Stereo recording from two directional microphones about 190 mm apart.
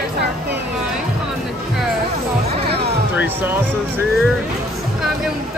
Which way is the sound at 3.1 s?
10° right (ahead or behind).